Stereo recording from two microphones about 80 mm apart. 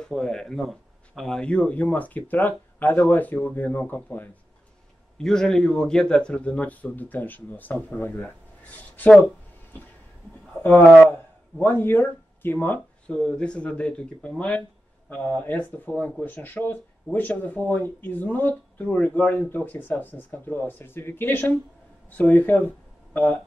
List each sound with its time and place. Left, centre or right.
0.0 s speech: centre
1.4 s speech: centre
5.1 s a man's voice: centre
11.5 s speech: left
13.0 s a man's voice: centre